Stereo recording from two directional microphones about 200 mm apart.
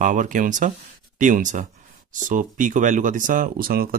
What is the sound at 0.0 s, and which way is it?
Speech, 40° right (ahead or behind).